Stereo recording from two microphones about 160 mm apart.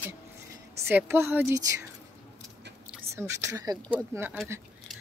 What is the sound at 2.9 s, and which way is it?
Speech, 15° right (ahead or behind).